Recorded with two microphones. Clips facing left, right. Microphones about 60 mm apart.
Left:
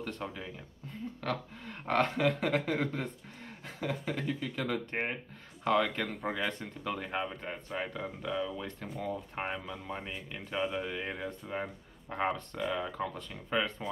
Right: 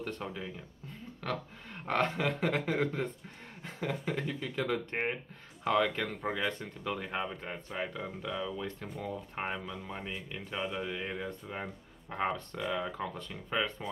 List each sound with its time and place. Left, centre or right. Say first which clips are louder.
0.0 s speech: right 1 dB; centre